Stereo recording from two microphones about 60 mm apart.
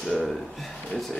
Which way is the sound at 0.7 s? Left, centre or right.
Centre.